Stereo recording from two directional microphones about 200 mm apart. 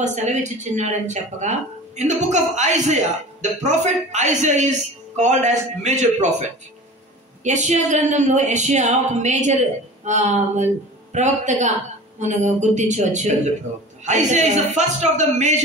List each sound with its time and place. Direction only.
0.0 s speech: 35° right (ahead or behind)